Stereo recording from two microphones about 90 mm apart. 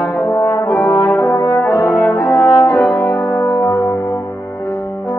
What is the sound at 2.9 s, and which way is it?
Music, 25° left (ahead or behind).